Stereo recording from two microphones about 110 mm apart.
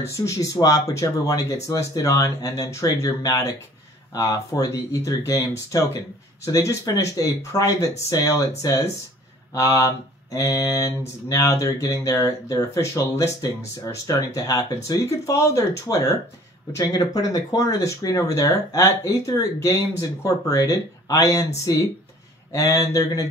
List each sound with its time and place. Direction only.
0.2 s speech: 30° left (ahead or behind)
4.1 s mantra: 30° left (ahead or behind)
16.7 s speech: 35° left (ahead or behind)
20.0 s mantra: 30° left (ahead or behind)
22.5 s mantra: 30° left (ahead or behind)